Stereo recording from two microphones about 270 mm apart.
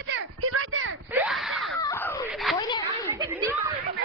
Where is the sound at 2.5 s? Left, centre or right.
Centre.